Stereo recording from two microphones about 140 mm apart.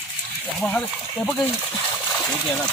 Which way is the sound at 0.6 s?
10° left (ahead or behind).